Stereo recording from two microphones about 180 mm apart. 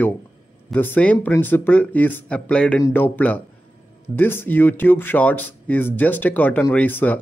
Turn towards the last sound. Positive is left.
turn(degrees=10)  # may be behind; listen again after turning